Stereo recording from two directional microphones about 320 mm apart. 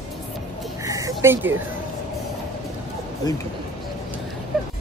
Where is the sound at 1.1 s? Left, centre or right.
Centre.